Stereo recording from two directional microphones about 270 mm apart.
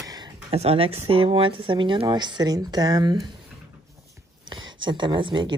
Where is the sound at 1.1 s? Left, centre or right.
Right.